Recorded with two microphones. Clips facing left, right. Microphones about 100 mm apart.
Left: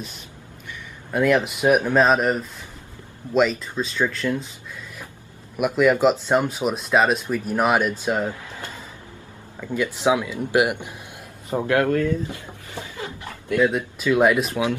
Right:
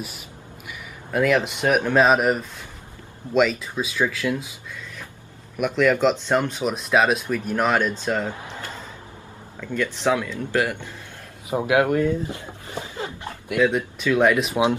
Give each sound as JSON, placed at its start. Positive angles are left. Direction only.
{"t": 1.1, "sound": "speech", "side_deg": 0}
{"t": 5.6, "sound": "speech", "side_deg": 5}
{"t": 8.3, "sound": "speech", "side_deg": -25}
{"t": 9.6, "sound": "speech", "side_deg": 10}
{"t": 11.5, "sound": "a sound", "side_deg": -15}
{"t": 13.6, "sound": "speech", "side_deg": 5}
{"t": 14.5, "sound": "speech", "side_deg": -20}